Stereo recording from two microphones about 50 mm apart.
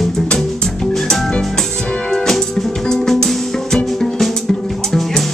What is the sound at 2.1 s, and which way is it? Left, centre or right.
Music, centre.